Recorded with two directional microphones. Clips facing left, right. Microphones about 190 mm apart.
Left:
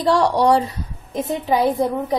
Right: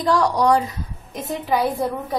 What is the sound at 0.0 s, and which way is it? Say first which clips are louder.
A woman's voice: left 2 dB; 30° left (ahead or behind).